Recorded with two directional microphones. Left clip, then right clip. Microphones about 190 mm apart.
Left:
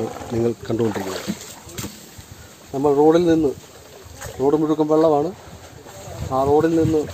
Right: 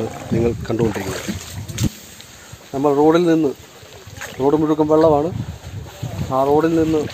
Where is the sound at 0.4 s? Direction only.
15° right (ahead or behind).